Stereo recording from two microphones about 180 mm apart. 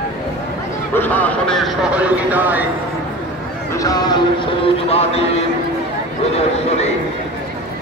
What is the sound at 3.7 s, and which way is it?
Speech, 20° left (ahead or behind).